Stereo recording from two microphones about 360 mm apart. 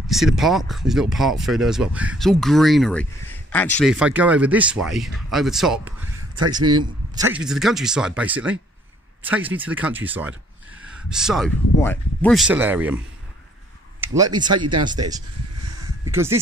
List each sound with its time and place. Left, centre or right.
0.1 s speech: centre
14.0 s speech: centre
15.8 s a sound: centre